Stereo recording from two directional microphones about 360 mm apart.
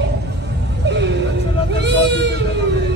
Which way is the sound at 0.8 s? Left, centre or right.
Right.